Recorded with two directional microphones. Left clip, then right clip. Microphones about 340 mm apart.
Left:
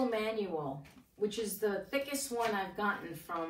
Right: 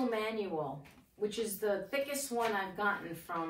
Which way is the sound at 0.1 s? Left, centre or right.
Centre.